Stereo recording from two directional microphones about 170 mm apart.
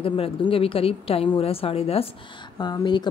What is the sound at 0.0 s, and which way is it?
A woman's voice, 35° left (ahead or behind).